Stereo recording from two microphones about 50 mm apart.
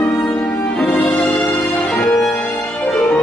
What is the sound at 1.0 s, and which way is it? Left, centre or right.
Music, left.